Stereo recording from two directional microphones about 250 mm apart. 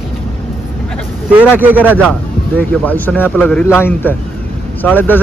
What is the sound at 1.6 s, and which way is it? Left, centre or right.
Speech, centre.